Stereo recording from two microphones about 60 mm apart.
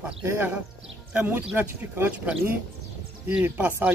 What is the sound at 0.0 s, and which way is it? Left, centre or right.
Speech, right.